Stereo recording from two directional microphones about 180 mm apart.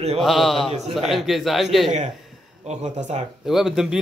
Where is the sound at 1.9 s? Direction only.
40° right (ahead or behind).